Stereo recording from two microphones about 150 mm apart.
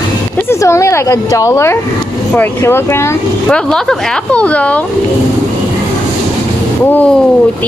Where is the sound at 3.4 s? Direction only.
5° left (ahead or behind).